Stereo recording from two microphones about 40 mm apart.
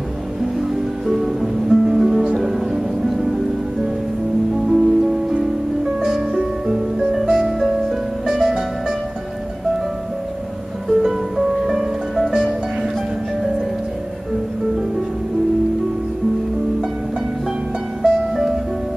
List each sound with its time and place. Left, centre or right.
0.4 s music: centre
4.6 s music: centre
11.0 s music: centre
18.0 s music: centre